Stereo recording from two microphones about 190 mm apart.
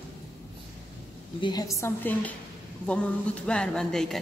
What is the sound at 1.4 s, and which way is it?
A woman's voice, 20° left (ahead or behind).